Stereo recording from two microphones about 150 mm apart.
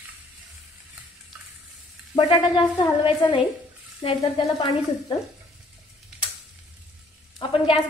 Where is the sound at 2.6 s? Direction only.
30° left (ahead or behind).